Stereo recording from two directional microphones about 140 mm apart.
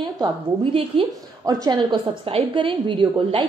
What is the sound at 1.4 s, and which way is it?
A woman's voice, 30° right (ahead or behind).